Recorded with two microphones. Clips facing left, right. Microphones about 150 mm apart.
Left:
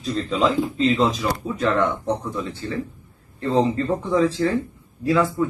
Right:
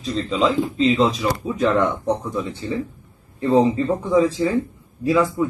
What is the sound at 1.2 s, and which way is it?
A man's voice, 15° right (ahead or behind).